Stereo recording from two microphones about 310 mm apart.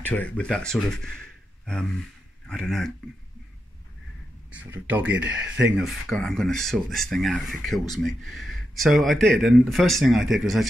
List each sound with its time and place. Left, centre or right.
0.0 s speech: centre
2.4 s speech: centre
4.6 s speech: centre